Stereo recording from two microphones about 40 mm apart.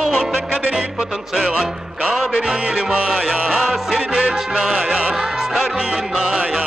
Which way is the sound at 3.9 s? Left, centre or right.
Right.